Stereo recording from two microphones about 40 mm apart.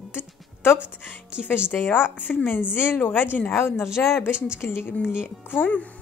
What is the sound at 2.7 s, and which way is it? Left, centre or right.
Speech, left.